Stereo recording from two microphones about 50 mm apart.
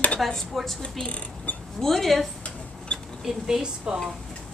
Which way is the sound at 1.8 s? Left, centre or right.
Centre.